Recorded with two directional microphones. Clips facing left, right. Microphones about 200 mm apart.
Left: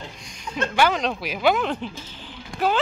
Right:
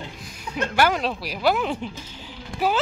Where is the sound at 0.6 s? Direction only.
10° right (ahead or behind).